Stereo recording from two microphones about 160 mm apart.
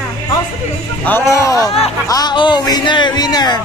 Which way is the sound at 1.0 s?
15° left (ahead or behind).